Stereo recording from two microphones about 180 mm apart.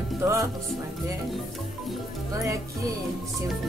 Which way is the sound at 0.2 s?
15° right (ahead or behind).